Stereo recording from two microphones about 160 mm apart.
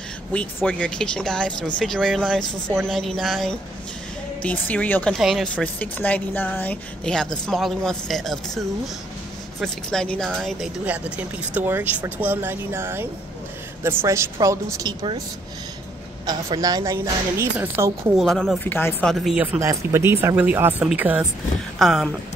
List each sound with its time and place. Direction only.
0.3 s speech: 10° left (ahead or behind)
5.1 s a woman's voice: centre (ahead or behind); by 15.2 s 25° right (ahead or behind)
16.3 s a woman's voice: 25° right (ahead or behind)
18.1 s speech: centre (ahead or behind)
18.6 s speech: 15° left (ahead or behind)
19.0 s speech: centre (ahead or behind)
19.4 s speech: 15° right (ahead or behind); by 22.1 s centre (ahead or behind)